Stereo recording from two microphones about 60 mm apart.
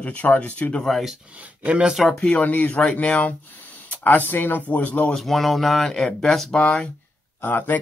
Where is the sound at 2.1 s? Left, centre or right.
Left.